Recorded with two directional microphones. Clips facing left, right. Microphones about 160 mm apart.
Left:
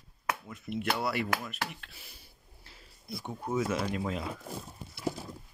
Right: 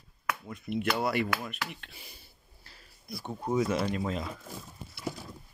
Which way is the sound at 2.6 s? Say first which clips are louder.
Left 1 dB; 20° left (ahead or behind).